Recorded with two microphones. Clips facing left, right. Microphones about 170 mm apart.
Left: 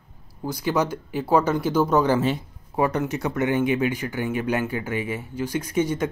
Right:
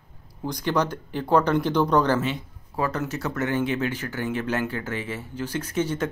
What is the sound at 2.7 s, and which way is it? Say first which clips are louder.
Speech: left 4 dB; 20° left (ahead or behind).